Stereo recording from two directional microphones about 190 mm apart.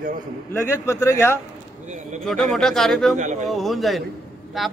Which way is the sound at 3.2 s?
40° right (ahead or behind).